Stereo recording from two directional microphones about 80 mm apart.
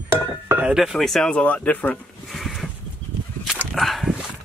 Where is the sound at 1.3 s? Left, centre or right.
Centre.